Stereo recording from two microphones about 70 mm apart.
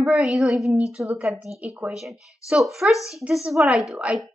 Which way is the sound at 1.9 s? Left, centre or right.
Centre.